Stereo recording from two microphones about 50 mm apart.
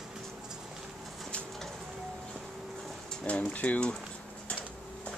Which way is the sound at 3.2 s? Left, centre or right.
Left.